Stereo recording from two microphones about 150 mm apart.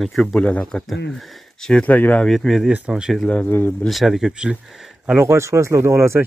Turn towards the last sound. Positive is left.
turn(degrees=-20)  # may be behind; listen again after turning